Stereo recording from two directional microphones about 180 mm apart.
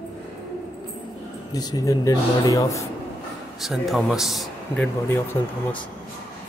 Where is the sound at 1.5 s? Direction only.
20° left (ahead or behind).